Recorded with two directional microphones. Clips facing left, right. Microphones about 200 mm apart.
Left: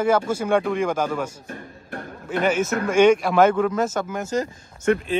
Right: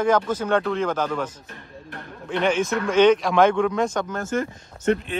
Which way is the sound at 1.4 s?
45° left (ahead or behind).